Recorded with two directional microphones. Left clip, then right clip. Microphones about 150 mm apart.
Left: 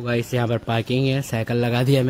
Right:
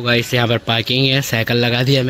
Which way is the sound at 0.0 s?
Centre (ahead or behind).